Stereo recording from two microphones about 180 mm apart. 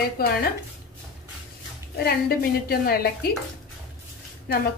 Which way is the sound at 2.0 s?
60° left (ahead or behind).